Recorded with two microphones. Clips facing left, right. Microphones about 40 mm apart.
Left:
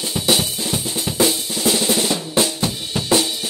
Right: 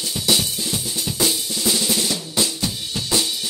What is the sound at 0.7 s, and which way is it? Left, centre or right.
Drum, left.